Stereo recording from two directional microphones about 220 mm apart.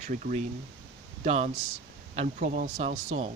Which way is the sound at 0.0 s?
35° right (ahead or behind).